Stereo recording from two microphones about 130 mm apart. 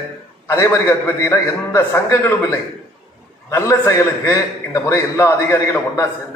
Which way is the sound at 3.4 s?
25° left (ahead or behind).